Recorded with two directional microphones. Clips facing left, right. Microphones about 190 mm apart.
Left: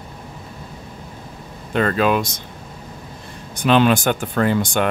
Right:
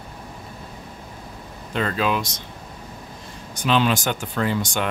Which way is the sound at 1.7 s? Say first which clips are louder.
Left 5 dB; 55° left (ahead or behind).